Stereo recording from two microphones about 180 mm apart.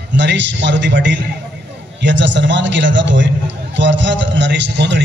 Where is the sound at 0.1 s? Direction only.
80° right.